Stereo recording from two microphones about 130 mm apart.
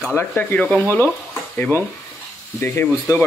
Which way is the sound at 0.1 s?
15° left (ahead or behind).